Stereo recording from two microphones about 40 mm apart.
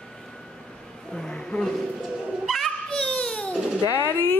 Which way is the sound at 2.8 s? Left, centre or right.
Left.